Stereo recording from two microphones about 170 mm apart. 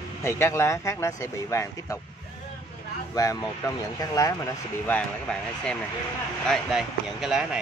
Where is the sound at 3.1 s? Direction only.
20° left (ahead or behind).